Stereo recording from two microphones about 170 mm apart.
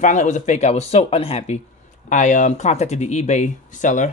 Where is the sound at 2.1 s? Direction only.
50° left (ahead or behind).